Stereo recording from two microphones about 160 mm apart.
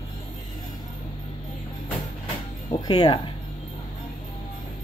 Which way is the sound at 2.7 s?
25° left (ahead or behind).